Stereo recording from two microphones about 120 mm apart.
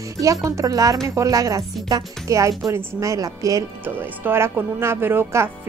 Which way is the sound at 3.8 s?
15° right (ahead or behind).